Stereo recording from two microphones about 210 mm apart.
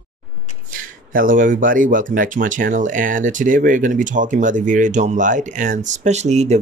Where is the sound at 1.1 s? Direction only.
40° right (ahead or behind).